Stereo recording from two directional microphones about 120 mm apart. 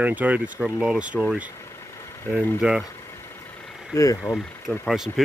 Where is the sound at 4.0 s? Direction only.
30° left (ahead or behind).